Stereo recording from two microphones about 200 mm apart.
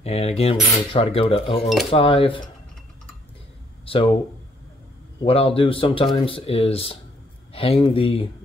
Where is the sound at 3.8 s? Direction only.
30° left (ahead or behind).